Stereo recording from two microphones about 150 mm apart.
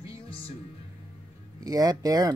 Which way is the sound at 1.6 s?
25° right (ahead or behind).